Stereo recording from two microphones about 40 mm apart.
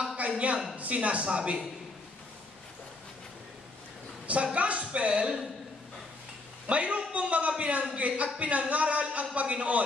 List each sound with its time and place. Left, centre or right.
0.3 s a man's voice: right
4.6 s speech: right
6.7 s speech: right